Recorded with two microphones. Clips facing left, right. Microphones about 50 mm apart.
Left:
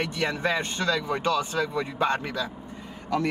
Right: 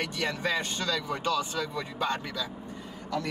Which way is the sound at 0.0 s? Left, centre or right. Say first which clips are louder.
Left 4 dB; left.